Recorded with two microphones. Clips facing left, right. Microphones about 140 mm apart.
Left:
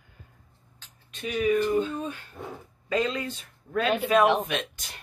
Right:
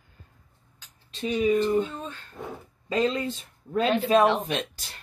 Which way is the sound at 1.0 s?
30° right (ahead or behind).